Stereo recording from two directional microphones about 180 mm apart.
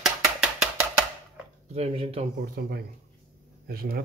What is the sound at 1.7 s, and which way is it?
Speech, 35° right (ahead or behind).